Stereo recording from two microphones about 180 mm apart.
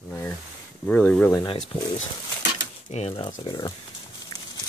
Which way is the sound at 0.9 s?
5° left (ahead or behind).